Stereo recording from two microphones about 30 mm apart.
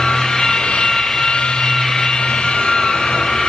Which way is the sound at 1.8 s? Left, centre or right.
Centre.